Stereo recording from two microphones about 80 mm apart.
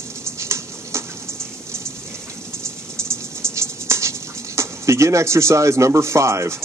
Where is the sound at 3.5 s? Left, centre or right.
Right.